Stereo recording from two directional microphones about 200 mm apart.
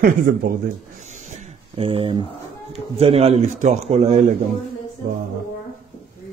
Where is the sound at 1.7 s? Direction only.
25° right (ahead or behind).